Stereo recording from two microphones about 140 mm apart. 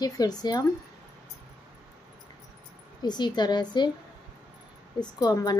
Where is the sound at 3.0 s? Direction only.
30° left (ahead or behind).